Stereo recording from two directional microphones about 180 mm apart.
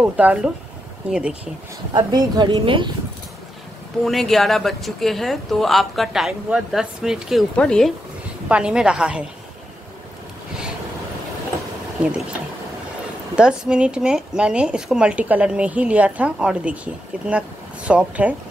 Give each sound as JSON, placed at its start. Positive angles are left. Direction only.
{"t": 0.0, "sound": "speech", "side_deg": -5}
{"t": 2.0, "sound": "a woman's voice", "side_deg": -25}
{"t": 4.0, "sound": "speech", "side_deg": 0}
{"t": 12.0, "sound": "speech", "side_deg": -5}
{"t": 13.4, "sound": "speech", "side_deg": -5}